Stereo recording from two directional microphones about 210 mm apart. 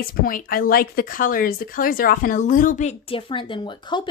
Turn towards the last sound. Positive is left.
turn(degrees=20)  # may be behind; listen again after turning